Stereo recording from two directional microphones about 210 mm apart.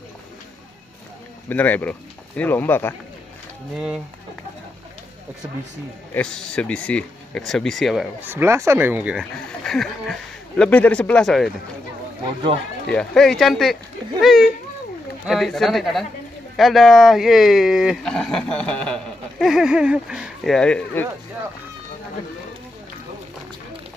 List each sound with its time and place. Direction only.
1.5 s speech: 10° left (ahead or behind)
3.7 s speech: 5° right (ahead or behind)
6.1 s speech: 5° left (ahead or behind)
12.8 s speech: centre (ahead or behind)